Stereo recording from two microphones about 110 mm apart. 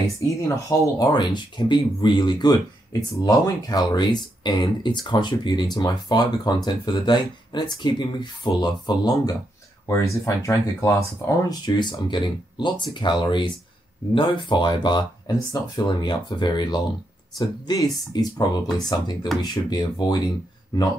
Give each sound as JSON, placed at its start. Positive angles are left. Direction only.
{"t": 0.4, "sound": "speech", "side_deg": 30}
{"t": 1.1, "sound": "speech", "side_deg": 45}
{"t": 9.8, "sound": "speech", "side_deg": 25}